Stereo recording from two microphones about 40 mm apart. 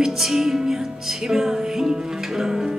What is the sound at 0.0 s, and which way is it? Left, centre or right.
Music, centre.